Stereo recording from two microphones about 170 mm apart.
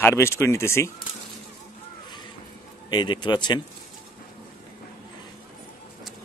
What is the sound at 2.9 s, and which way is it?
Speech, 25° left (ahead or behind).